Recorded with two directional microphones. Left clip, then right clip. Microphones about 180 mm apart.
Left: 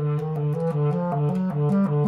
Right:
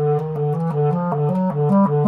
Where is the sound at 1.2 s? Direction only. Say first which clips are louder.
Right 7 dB; 25° right (ahead or behind).